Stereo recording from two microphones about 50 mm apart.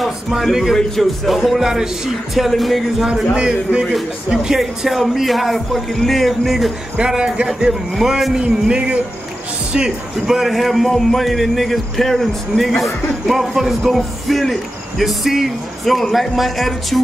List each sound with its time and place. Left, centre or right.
0.3 s speech: centre
3.3 s a man's voice: centre
4.6 s speech: centre
7.0 s a man's voice: centre